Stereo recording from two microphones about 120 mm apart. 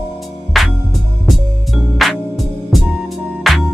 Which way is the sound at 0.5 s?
Centre (ahead or behind).